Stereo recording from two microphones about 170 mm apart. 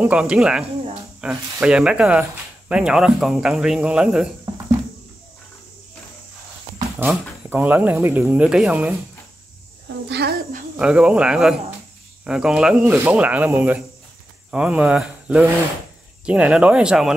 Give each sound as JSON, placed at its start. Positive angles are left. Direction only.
{"t": 0.0, "sound": "speech", "side_deg": -5}
{"t": 7.0, "sound": "speech", "side_deg": -10}
{"t": 10.0, "sound": "a woman's voice", "side_deg": -85}
{"t": 10.8, "sound": "speech", "side_deg": -5}